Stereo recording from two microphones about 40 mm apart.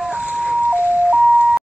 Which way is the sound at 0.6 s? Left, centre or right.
Right.